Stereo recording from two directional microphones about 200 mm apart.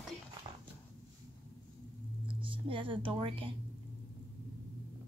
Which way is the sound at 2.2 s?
25° right (ahead or behind).